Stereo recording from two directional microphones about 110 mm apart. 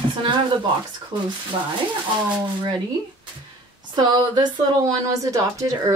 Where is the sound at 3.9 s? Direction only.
40° right (ahead or behind).